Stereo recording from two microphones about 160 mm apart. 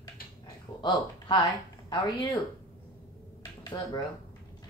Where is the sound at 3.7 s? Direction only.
25° left (ahead or behind).